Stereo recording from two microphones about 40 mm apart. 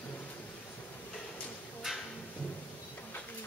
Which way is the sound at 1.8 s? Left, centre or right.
Centre.